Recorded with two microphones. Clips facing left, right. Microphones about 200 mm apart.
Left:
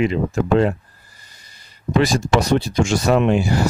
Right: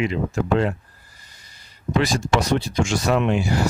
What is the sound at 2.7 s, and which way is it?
Speech, 35° left (ahead or behind).